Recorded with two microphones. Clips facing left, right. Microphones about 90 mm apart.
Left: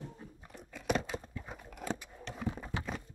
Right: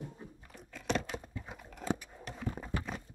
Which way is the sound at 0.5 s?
5° left (ahead or behind).